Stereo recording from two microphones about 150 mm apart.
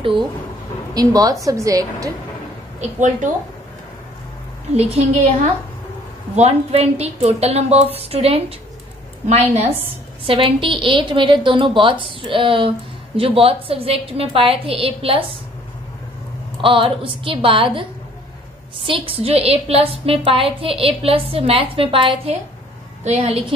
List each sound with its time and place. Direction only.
0.9 s a woman's voice: 25° right (ahead or behind)
4.7 s a woman's voice: 45° right (ahead or behind)
10.2 s a woman's voice: 35° right (ahead or behind)
16.6 s a woman's voice: 35° right (ahead or behind)
18.9 s a woman's voice: 40° right (ahead or behind)